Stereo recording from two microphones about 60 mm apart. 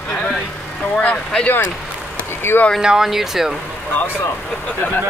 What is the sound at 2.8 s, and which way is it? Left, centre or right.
Speech, centre.